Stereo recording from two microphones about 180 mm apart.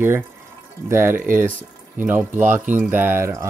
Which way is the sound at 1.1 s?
50° right (ahead or behind).